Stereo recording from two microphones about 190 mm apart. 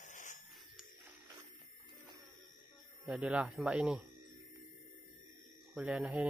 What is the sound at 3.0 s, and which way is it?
Speech, 5° right (ahead or behind).